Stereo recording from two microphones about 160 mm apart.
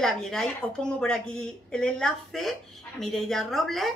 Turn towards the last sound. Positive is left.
turn(degrees=0)  # may be behind; listen again after turning